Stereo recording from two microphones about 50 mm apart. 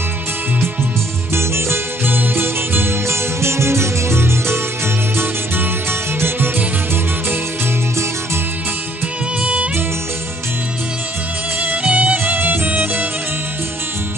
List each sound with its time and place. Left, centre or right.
1.3 s music: right
2.1 s music: right
3.3 s music: right
9.4 s music: right
11.6 s music: right
12.3 s music: right